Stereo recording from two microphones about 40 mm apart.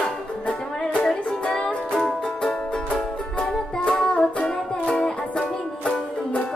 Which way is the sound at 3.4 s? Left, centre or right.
Left.